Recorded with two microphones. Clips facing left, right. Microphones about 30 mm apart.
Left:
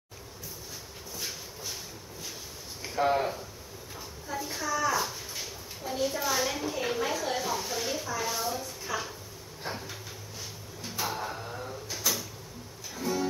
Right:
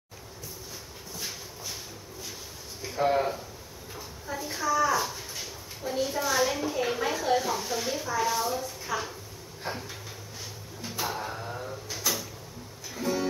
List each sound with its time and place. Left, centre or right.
3.2 s a woman's voice: centre
9.6 s a sound: centre
12.9 s music: centre